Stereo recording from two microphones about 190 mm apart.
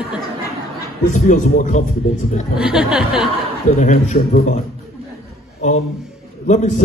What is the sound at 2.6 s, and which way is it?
Speech, 5° right (ahead or behind).